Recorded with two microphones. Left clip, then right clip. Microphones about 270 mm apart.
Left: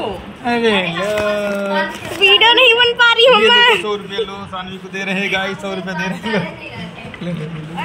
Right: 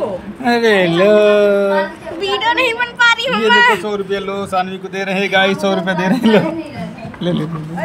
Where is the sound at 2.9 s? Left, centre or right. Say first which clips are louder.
Left 3 dB; centre.